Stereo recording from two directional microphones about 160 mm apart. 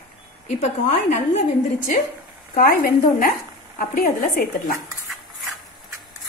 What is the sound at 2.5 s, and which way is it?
A woman's voice, 65° left (ahead or behind).